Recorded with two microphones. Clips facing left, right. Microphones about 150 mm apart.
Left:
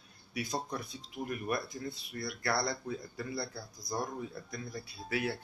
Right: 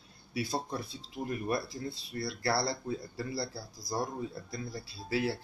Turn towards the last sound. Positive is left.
turn(degrees=-30)  # may be behind; listen again after turning